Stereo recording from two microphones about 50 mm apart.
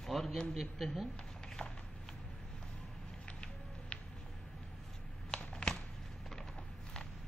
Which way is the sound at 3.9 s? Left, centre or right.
Left.